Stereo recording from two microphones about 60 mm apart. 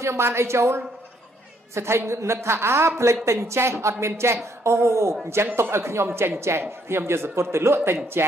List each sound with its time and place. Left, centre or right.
0.0 s a man's voice: right